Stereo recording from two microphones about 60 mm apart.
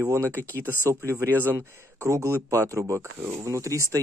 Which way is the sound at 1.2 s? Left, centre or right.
Right.